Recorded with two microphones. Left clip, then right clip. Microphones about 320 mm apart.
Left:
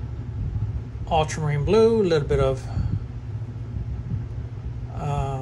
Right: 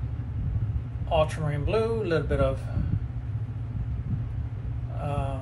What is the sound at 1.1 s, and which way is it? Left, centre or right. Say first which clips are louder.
Speech: left 2 dB; left.